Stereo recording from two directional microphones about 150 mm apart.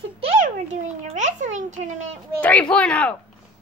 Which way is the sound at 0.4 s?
55° right (ahead or behind).